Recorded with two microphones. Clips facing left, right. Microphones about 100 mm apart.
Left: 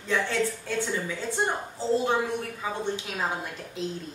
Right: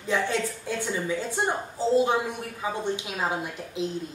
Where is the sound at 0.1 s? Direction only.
15° right (ahead or behind).